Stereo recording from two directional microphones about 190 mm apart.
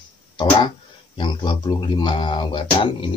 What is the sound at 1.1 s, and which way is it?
Speech, 25° left (ahead or behind).